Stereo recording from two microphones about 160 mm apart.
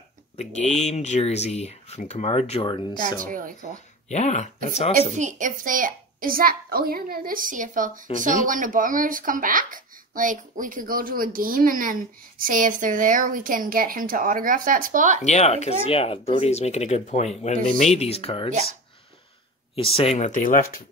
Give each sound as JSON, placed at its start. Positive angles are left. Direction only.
{"t": 0.4, "sound": "speech", "side_deg": 45}
{"t": 2.6, "sound": "speech", "side_deg": 30}
{"t": 3.2, "sound": "a woman's voice", "side_deg": -60}
{"t": 4.1, "sound": "speech", "side_deg": 45}
{"t": 5.1, "sound": "a woman's voice", "side_deg": -50}
{"t": 15.2, "sound": "speech", "side_deg": 40}
{"t": 19.7, "sound": "speech", "side_deg": 35}